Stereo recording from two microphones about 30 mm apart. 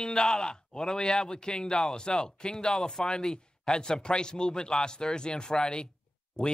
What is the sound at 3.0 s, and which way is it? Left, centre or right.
Speech, left.